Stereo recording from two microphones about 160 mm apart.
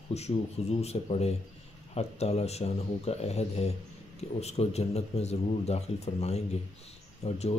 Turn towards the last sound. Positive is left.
turn(degrees=40)  # may be behind; listen again after turning